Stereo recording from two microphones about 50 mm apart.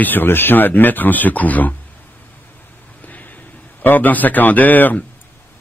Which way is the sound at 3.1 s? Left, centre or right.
Left.